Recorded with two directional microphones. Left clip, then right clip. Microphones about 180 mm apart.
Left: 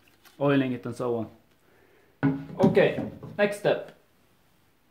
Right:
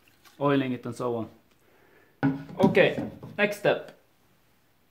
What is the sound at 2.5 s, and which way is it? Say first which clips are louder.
Music: even; 20° right (ahead or behind).